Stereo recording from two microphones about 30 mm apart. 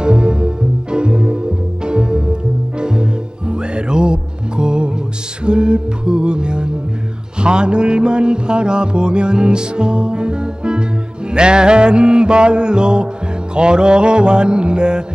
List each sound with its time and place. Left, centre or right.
0.0 s music: right
5.4 s mantra: right
7.3 s music: right